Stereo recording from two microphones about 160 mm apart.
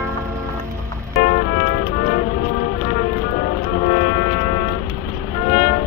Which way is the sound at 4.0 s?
65° left (ahead or behind).